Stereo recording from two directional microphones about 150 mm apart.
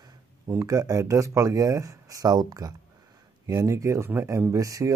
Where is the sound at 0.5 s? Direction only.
25° right (ahead or behind).